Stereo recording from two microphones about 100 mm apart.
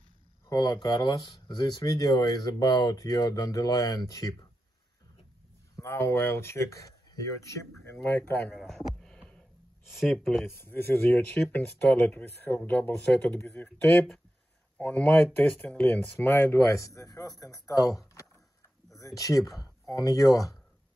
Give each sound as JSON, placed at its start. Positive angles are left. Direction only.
{"t": 0.5, "sound": "speech", "side_deg": 40}
{"t": 5.8, "sound": "speech", "side_deg": 25}
{"t": 8.5, "sound": "a sound", "side_deg": 5}
{"t": 10.4, "sound": "speech", "side_deg": 20}